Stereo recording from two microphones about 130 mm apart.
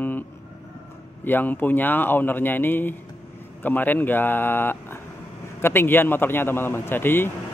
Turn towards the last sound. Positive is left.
turn(degrees=15)  # may be behind; listen again after turning